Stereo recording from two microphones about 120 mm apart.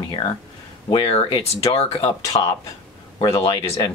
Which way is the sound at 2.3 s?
45° left (ahead or behind).